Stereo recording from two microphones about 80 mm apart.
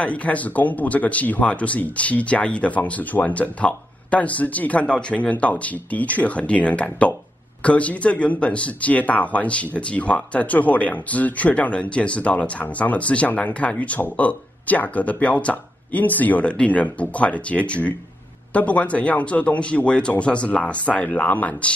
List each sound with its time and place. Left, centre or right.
0.0 s speech: centre